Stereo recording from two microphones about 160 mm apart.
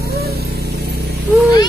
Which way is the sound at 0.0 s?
80° right.